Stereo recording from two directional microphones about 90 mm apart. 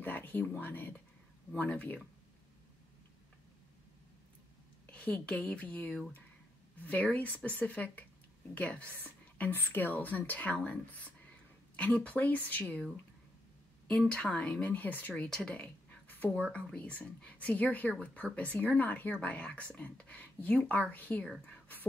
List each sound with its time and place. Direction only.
0.0 s speech: 20° left (ahead or behind)
4.9 s speech: 10° left (ahead or behind)
13.8 s speech: 10° left (ahead or behind)
15.2 s speech: 10° left (ahead or behind)
21.5 s whispering: 20° left (ahead or behind)